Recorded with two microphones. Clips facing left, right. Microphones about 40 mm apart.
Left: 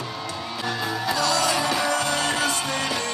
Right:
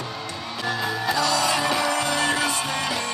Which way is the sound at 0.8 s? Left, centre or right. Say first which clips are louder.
Even; centre.